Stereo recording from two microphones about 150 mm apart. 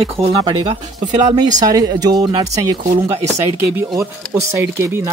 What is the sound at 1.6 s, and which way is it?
Speech, 25° right (ahead or behind).